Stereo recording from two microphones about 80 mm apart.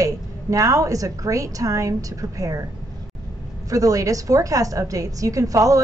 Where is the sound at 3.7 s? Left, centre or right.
Right.